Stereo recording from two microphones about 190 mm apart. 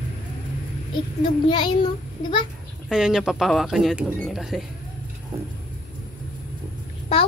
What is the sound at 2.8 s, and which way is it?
Speech, centre (ahead or behind).